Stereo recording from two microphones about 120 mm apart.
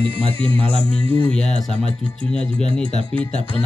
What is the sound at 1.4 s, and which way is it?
Speech, 65° left (ahead or behind).